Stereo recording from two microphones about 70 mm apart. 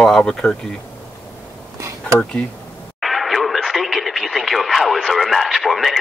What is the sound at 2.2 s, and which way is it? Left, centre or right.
Speech, centre.